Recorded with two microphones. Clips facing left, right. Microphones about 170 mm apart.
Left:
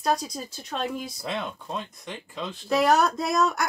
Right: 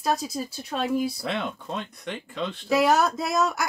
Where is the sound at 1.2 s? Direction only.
65° right (ahead or behind).